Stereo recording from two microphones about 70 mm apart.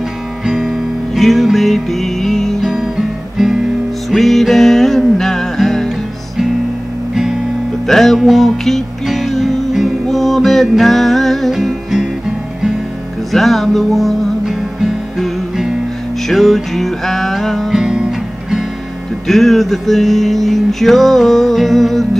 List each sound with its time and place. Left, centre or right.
0.5 s music: centre
7.8 s music: centre
13.3 s music: centre
19.2 s music: centre